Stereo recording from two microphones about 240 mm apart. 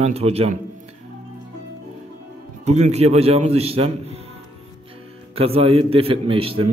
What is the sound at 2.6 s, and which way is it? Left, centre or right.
A man's voice, right.